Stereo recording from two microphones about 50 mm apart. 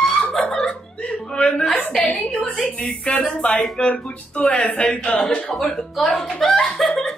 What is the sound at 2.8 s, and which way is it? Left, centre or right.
Speech, left.